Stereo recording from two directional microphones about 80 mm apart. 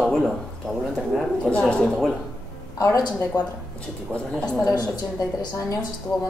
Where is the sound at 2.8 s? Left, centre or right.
Left.